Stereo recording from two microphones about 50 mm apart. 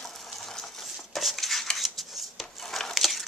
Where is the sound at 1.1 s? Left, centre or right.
Centre.